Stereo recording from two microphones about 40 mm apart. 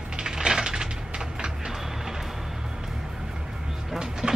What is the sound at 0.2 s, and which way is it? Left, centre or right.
Coin, centre.